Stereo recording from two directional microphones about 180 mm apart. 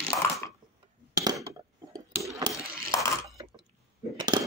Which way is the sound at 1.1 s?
20° right (ahead or behind).